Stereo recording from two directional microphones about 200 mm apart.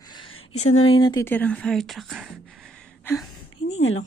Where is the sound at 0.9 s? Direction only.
20° left (ahead or behind).